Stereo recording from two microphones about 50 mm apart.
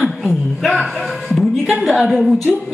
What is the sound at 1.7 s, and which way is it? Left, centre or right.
Speech, centre.